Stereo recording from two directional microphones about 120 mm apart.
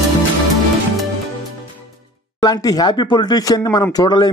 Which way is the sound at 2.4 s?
30° left (ahead or behind).